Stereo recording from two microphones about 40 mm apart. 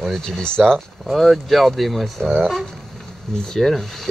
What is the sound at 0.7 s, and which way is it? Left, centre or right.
Speech, centre.